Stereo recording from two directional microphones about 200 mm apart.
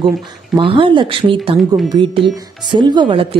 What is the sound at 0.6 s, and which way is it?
A woman's voice, 25° right (ahead or behind).